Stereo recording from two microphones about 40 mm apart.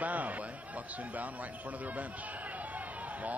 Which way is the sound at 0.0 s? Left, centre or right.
Right.